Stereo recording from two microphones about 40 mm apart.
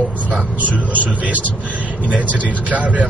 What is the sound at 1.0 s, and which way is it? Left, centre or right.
Speech, right.